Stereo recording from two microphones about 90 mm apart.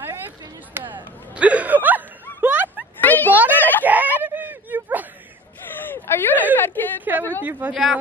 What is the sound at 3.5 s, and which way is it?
Speech, 20° left (ahead or behind).